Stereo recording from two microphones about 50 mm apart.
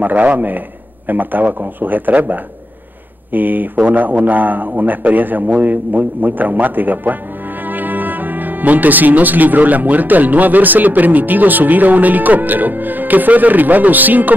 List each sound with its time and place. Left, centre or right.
0.0 s speech: right